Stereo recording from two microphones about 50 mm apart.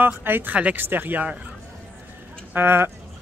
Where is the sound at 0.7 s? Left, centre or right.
Right.